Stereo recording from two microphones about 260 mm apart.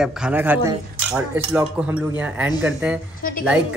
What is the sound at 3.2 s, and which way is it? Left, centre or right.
Speech, left.